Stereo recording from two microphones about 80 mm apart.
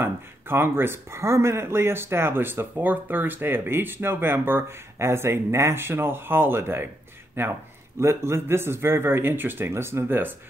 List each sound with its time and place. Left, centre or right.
0.0 s speech: right